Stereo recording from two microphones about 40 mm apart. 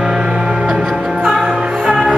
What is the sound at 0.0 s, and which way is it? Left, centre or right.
Music, centre.